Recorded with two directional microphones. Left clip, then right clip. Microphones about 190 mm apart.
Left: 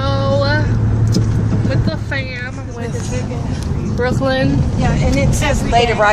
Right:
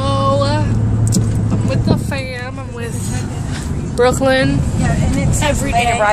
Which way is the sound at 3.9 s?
40° right (ahead or behind).